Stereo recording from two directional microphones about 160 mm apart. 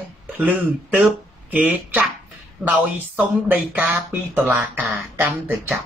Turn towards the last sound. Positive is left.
turn(degrees=-10)  # may be behind; listen again after turning